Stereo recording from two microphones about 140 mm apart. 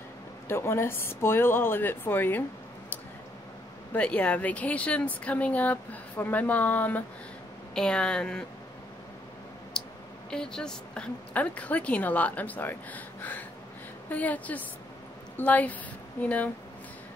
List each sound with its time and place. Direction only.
0.5 s speech: 15° left (ahead or behind)
3.9 s a woman's voice: 10° left (ahead or behind)
9.8 s a sound: 5° left (ahead or behind)
10.3 s a woman's voice: 5° left (ahead or behind)